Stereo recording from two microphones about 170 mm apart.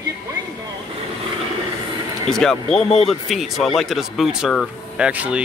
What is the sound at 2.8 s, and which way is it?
Speech, 40° left (ahead or behind).